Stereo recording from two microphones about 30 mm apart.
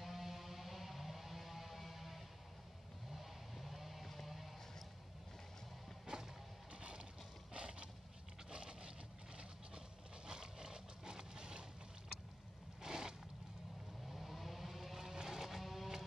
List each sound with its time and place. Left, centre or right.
0.0 s music: centre
3.1 s vehicle: centre
6.0 s music: right
6.7 s a sound: right
12.8 s boat: centre
14.0 s vehicle: centre
15.2 s music: centre